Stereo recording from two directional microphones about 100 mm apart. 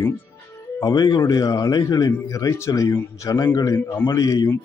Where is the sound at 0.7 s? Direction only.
45° left (ahead or behind); by 4.2 s 25° left (ahead or behind).